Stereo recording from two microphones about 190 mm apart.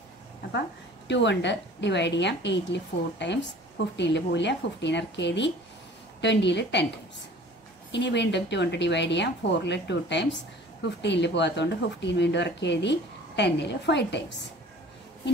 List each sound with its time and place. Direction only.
0.5 s a woman's voice: 65° left (ahead or behind)
7.9 s a woman's voice: 65° left (ahead or behind)